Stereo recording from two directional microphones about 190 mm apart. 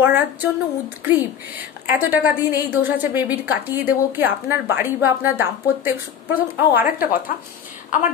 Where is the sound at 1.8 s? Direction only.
10° right (ahead or behind).